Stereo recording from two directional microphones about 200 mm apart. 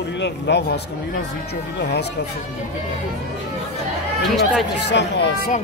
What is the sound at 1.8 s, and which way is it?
Speech, 55° left (ahead or behind).